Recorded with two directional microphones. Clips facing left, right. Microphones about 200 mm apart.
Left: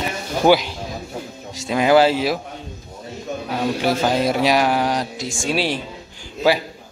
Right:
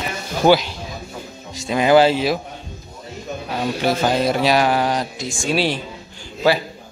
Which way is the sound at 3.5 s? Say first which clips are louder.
Even; 10° left (ahead or behind).